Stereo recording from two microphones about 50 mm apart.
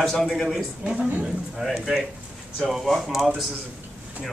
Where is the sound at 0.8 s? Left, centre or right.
Centre.